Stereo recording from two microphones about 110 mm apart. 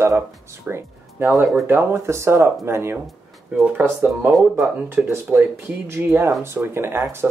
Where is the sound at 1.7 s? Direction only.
20° right (ahead or behind).